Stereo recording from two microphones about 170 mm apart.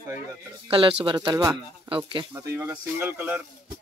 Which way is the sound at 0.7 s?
30° right (ahead or behind).